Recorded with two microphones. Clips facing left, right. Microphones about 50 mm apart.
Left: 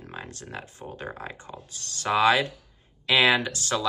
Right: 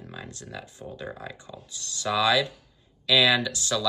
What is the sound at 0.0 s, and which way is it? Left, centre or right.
Speech, left.